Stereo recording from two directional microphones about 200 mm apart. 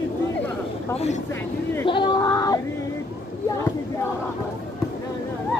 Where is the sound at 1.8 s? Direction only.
20° left (ahead or behind).